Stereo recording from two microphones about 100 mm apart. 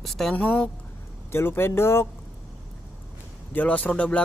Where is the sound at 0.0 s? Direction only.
Centre (ahead or behind).